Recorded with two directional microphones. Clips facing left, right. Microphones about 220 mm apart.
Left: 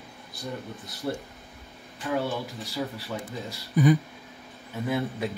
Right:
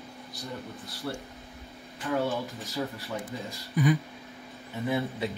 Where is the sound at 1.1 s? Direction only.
20° left (ahead or behind).